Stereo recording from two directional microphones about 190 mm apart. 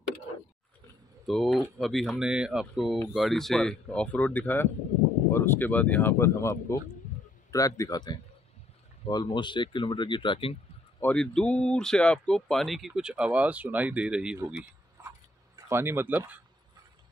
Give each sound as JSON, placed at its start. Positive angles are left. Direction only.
{"t": 1.2, "sound": "speech", "side_deg": 0}
{"t": 11.0, "sound": "speech", "side_deg": 5}
{"t": 15.0, "sound": "a sound", "side_deg": -15}